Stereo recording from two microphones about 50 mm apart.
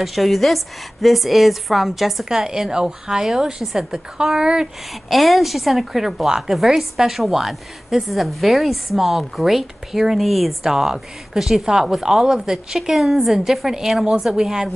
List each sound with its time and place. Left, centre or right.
0.0 s a woman's voice: centre
5.1 s a woman's voice: centre